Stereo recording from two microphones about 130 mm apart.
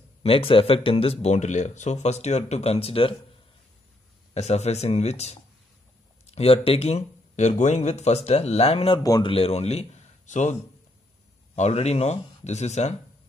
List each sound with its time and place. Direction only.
0.2 s speech: 45° left (ahead or behind)
4.3 s a man's voice: 55° left (ahead or behind)